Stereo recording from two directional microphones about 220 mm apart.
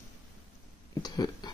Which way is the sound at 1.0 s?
20° left (ahead or behind).